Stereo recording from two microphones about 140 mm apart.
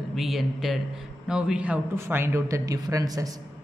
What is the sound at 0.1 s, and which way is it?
A man's voice, centre (ahead or behind).